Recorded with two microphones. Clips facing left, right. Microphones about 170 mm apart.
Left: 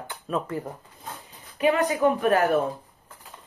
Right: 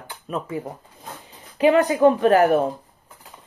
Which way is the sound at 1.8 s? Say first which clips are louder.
Right 5 dB; 30° right (ahead or behind).